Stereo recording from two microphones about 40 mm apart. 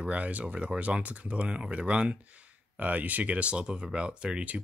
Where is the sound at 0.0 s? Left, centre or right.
Right.